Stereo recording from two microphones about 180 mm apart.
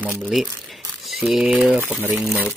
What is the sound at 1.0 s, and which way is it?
Speech, centre (ahead or behind).